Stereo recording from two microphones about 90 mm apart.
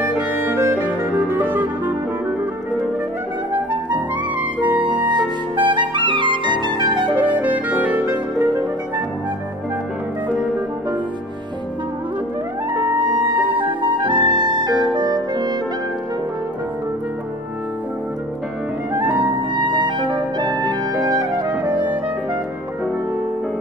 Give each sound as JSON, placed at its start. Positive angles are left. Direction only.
{"t": 0.0, "sound": "music", "side_deg": -20}
{"t": 3.5, "sound": "clarinet", "side_deg": -15}
{"t": 4.6, "sound": "music", "side_deg": -60}
{"t": 5.6, "sound": "clarinet", "side_deg": -65}
{"t": 7.2, "sound": "clarinet", "side_deg": -20}
{"t": 8.1, "sound": "music", "side_deg": -20}
{"t": 12.9, "sound": "music", "side_deg": -15}
{"t": 13.6, "sound": "music", "side_deg": -65}
{"t": 18.9, "sound": "music", "side_deg": -20}
{"t": 19.3, "sound": "music", "side_deg": -60}